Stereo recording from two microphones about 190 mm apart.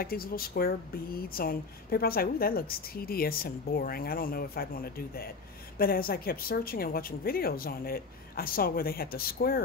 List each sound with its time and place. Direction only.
0.0 s speech: 50° left (ahead or behind)